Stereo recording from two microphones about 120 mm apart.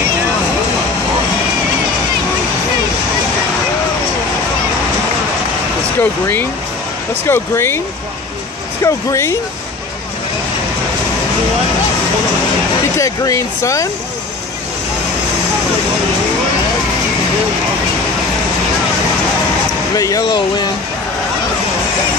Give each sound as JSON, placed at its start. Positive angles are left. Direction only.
{"t": 5.9, "sound": "speech", "side_deg": 15}
{"t": 8.8, "sound": "speech", "side_deg": 25}
{"t": 12.9, "sound": "speech", "side_deg": 25}
{"t": 20.0, "sound": "speech", "side_deg": 30}